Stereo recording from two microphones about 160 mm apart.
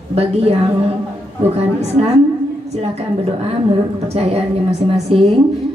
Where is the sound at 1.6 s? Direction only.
40° right (ahead or behind).